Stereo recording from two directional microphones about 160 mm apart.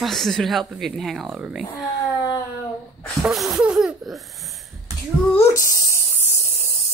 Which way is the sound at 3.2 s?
Centre (ahead or behind).